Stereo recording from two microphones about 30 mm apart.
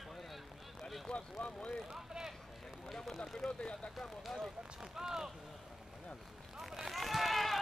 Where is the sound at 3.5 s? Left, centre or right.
Left.